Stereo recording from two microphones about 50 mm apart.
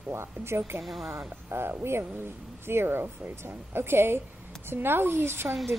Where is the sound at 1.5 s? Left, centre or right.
Right.